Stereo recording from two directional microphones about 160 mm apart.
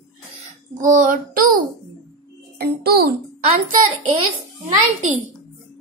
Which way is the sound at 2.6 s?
80° right.